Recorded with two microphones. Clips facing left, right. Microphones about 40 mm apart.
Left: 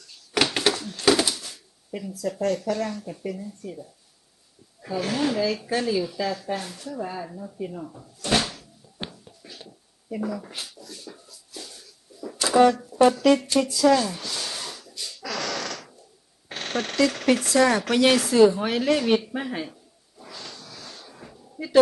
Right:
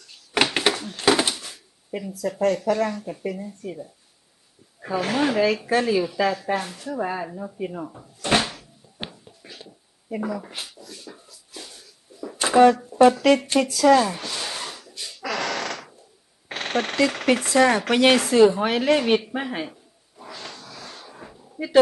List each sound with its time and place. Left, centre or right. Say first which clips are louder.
0.1 s door: right 2 dB; right
4.8 s speech: right 3 dB; right
7.0 s speech: right 5 dB; right
7.3 s a sound: right 3 dB; right
12.4 s speech: right 3 dB; right
13.7 s speech: right 3 dB; right
13.9 s a sound: right 4 dB; right
21.6 s speech: right 4 dB; right